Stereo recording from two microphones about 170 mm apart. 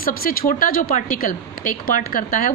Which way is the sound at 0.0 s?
60° left (ahead or behind).